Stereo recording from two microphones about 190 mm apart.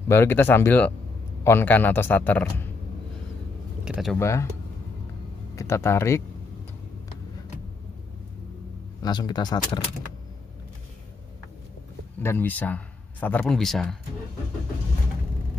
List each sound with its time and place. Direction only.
0.1 s speech: 10° left (ahead or behind)
3.8 s speech: centre (ahead or behind)
4.2 s speech: 15° left (ahead or behind)
5.6 s speech: 15° left (ahead or behind)
9.0 s speech: 20° left (ahead or behind)
12.2 s speech: 10° left (ahead or behind)